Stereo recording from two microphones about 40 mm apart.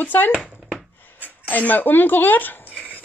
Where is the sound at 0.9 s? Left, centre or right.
Left.